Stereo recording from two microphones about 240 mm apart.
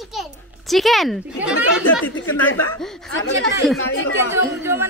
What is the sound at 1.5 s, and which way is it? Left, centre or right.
Speech, left.